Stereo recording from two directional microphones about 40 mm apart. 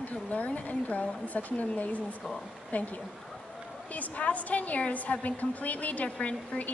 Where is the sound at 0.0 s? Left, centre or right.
Left.